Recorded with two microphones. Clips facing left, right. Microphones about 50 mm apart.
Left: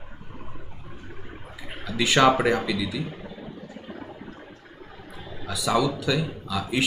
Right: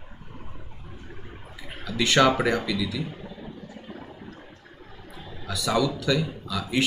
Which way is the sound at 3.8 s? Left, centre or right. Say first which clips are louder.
Left 2 dB; left.